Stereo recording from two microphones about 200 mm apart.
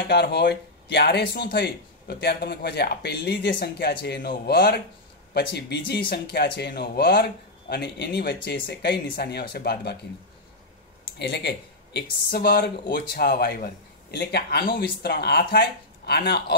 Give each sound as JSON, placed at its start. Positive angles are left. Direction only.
{"t": 0.1, "sound": "speech", "side_deg": 55}
{"t": 11.1, "sound": "speech", "side_deg": 55}